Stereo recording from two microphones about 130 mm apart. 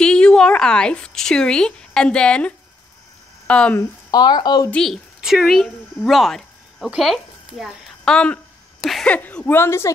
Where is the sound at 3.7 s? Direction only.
30° left (ahead or behind).